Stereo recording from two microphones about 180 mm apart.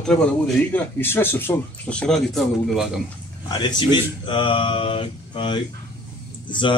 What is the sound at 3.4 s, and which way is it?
Speech, 25° left (ahead or behind).